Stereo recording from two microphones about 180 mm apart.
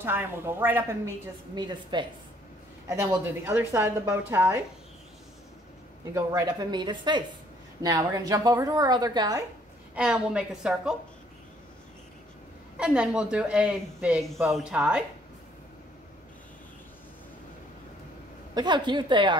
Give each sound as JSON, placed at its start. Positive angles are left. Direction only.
{"t": 0.0, "sound": "a woman's voice", "side_deg": -10}
{"t": 2.9, "sound": "a woman's voice", "side_deg": -10}
{"t": 6.1, "sound": "a woman's voice", "side_deg": -20}
{"t": 9.9, "sound": "speech", "side_deg": -5}
{"t": 12.7, "sound": "speech", "side_deg": -5}
{"t": 18.5, "sound": "a woman's voice", "side_deg": -25}